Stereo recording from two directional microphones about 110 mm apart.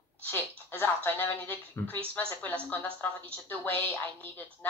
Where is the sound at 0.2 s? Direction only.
20° left (ahead or behind).